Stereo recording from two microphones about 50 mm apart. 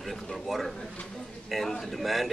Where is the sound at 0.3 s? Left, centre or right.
Centre.